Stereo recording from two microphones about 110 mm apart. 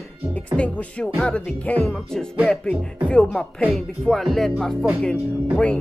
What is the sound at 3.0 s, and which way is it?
Speech, 10° left (ahead or behind).